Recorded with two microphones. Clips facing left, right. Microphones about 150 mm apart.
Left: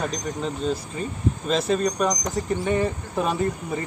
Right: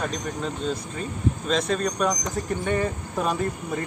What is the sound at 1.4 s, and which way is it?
Speech, 5° left (ahead or behind).